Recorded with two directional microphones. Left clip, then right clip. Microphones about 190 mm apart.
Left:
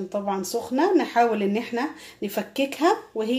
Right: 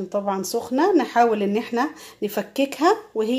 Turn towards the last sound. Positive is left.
turn(degrees=-30)  # may be behind; listen again after turning